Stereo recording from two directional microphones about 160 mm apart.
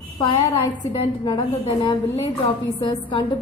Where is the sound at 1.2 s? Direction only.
25° left (ahead or behind).